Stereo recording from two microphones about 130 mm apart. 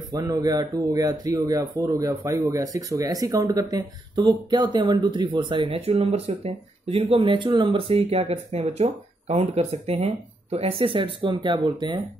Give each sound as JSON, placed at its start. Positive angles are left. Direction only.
{"t": 0.1, "sound": "speech", "side_deg": -30}